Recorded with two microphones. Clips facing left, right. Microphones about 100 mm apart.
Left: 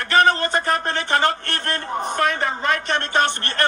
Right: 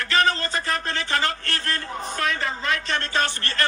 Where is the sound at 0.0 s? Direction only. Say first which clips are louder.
Left 5 dB; 55° left (ahead or behind).